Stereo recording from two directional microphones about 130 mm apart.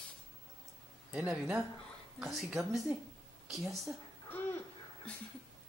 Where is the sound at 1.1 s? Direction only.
10° right (ahead or behind).